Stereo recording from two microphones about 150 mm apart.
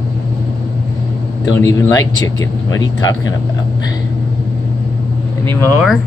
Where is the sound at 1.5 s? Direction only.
20° left (ahead or behind).